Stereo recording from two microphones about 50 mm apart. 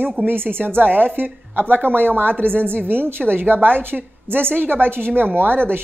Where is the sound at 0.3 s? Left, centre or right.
Right.